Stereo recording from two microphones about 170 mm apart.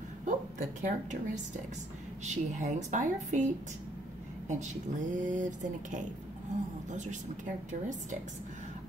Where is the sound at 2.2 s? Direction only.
45° right (ahead or behind).